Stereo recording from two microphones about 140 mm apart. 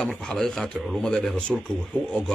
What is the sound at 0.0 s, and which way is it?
Speech, 5° left (ahead or behind).